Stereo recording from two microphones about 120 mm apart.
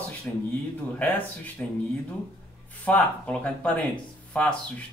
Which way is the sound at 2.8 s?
10° left (ahead or behind).